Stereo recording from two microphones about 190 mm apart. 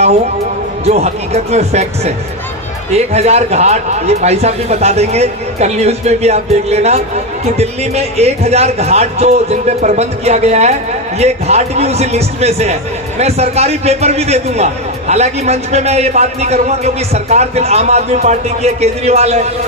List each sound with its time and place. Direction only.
0.8 s a man's voice: 35° right (ahead or behind)